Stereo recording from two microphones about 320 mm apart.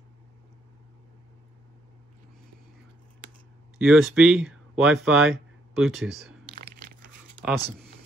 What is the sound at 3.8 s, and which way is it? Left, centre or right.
Speech, centre.